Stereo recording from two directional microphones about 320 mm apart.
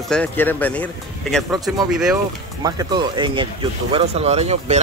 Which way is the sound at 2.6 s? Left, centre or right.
Centre.